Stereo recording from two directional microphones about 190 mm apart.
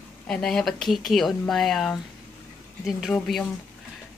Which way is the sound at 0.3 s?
5° left (ahead or behind).